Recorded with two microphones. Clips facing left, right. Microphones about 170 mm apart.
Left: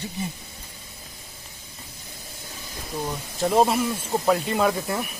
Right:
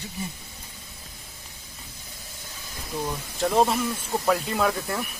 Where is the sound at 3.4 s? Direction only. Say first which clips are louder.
Left 2 dB; 5° left (ahead or behind).